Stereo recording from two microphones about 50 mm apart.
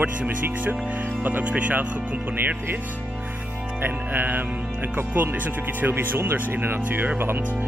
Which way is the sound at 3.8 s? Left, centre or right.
Right.